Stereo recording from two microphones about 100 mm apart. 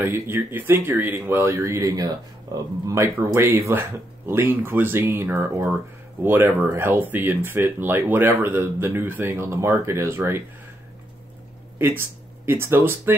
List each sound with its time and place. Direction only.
0.0 s speech: 20° right (ahead or behind)
11.8 s speech: 20° right (ahead or behind)